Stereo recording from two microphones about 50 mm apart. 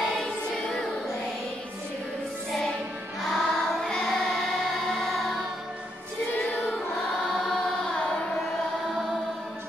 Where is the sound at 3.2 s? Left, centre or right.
Centre.